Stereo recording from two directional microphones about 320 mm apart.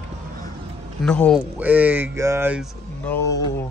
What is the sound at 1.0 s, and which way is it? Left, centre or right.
Speech, centre.